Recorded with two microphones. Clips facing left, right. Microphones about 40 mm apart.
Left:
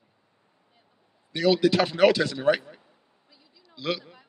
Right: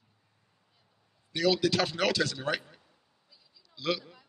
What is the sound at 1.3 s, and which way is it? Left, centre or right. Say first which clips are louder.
A man's voice: left 5 dB; left.